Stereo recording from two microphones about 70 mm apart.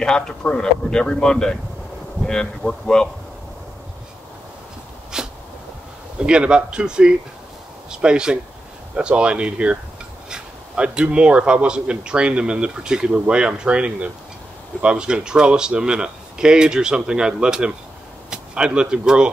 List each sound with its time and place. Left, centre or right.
0.0 s speech: centre
5.1 s sneeze: centre
6.1 s speech: centre